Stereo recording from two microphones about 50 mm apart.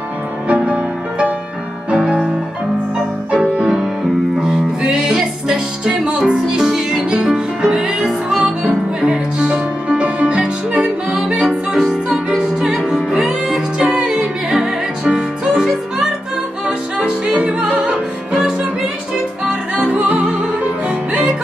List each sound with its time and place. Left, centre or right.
0.5 s music: right
1.9 s music: centre
3.3 s music: right
4.4 s music: centre
11.8 s music: centre
16.6 s music: centre
19.8 s music: right